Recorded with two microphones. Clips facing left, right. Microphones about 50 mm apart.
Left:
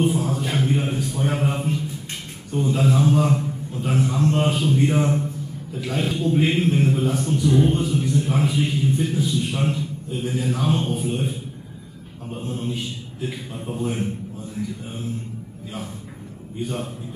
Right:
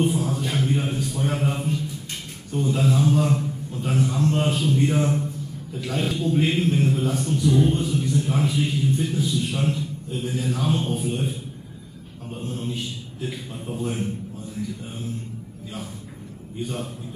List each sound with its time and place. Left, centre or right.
0.0 s a sound: centre
2.5 s a man's voice: centre
16.6 s a man's voice: centre